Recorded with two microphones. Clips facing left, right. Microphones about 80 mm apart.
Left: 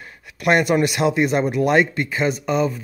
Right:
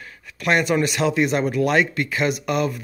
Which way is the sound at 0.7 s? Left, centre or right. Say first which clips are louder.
Left 2 dB; left.